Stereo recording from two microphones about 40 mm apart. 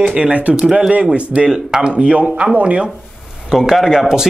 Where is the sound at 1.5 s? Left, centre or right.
Centre.